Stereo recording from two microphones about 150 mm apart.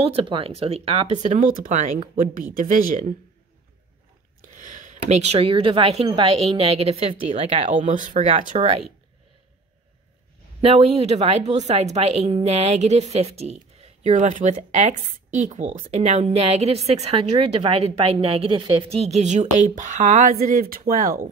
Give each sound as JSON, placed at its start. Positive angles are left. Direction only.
{"t": 0.0, "sound": "a woman's voice", "side_deg": -40}
{"t": 4.6, "sound": "a woman's voice", "side_deg": -55}
{"t": 7.6, "sound": "speech", "side_deg": -55}
{"t": 8.5, "sound": "a woman's voice", "side_deg": -45}
{"t": 10.6, "sound": "a woman's voice", "side_deg": -40}
{"t": 20.9, "sound": "speech", "side_deg": -65}